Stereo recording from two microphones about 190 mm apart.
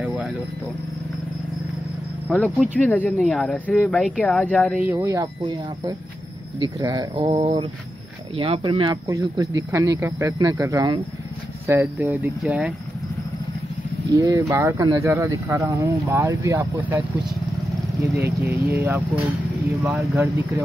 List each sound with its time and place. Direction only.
2.2 s speech: 5° left (ahead or behind)
4.8 s speech: 15° right (ahead or behind)
14.1 s speech: 20° right (ahead or behind)
18.5 s speech: 10° right (ahead or behind)